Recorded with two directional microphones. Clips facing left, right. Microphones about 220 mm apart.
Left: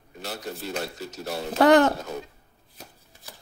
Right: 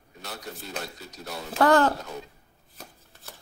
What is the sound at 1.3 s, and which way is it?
Speech, 20° left (ahead or behind).